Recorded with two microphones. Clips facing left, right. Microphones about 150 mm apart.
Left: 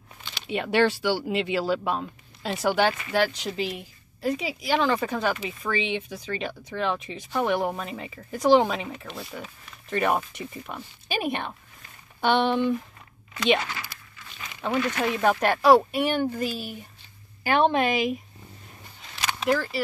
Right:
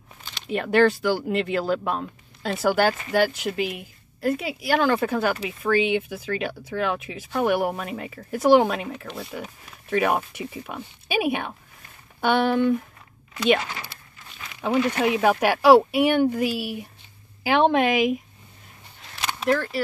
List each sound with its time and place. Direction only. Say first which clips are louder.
0.3 s a woman's voice: right 3 dB; centre (ahead or behind)
13.9 s crumpling: even; 25° right (ahead or behind)
14.6 s a woman's voice: right 4 dB; 10° right (ahead or behind)
19.2 s a sound: right 2 dB; centre (ahead or behind)